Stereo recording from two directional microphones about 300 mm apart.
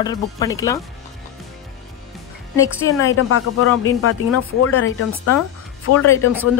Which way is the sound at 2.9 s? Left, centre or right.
Centre.